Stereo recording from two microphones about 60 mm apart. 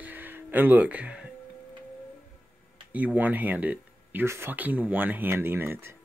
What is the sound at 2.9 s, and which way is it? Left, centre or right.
Speech, right.